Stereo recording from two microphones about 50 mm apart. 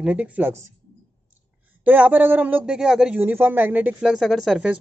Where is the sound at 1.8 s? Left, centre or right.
Right.